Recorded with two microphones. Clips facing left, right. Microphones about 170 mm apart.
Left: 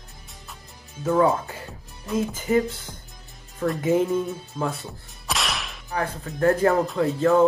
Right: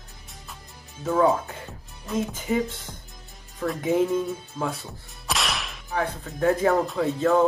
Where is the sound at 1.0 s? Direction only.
Centre (ahead or behind).